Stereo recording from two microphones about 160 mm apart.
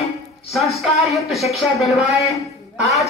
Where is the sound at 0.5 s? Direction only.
Centre (ahead or behind).